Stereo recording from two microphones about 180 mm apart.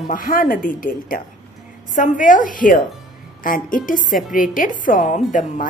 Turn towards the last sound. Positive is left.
turn(degrees=45)  # may be behind; listen again after turning